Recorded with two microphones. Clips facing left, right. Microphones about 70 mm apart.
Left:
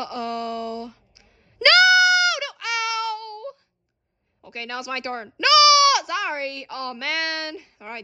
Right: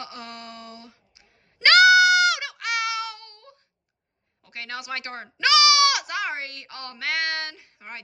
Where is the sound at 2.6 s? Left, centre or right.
Right.